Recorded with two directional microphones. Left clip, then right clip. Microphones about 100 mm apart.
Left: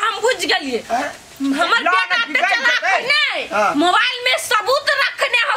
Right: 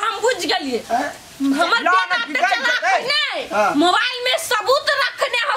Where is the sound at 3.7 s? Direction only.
Centre (ahead or behind).